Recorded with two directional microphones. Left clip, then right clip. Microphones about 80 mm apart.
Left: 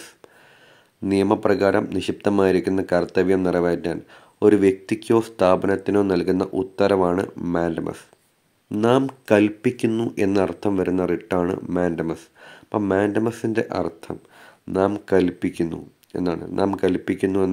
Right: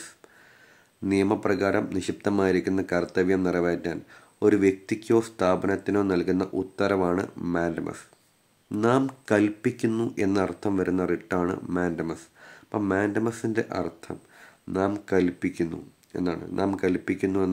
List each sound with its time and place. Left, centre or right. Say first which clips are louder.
1.0 s speech: left 5 dB; left